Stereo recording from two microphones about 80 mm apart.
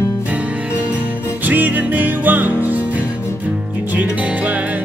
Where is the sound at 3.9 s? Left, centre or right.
Centre.